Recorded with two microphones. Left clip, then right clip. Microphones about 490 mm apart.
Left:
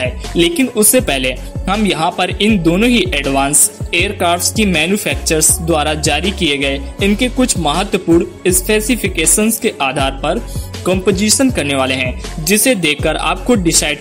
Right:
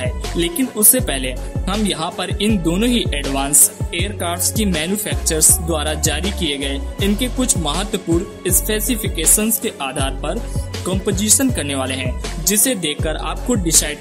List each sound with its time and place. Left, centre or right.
0.4 s speech: right